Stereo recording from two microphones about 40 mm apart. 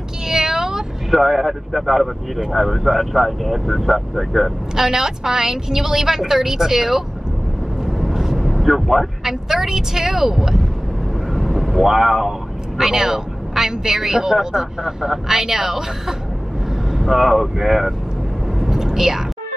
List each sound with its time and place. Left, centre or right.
0.3 s cat: centre
1.1 s speech: centre
4.7 s a woman's voice: centre
7.8 s vehicle: centre
8.5 s a woman's voice: centre
18.6 s vehicle: centre